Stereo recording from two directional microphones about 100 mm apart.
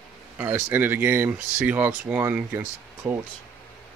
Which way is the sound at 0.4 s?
20° right (ahead or behind).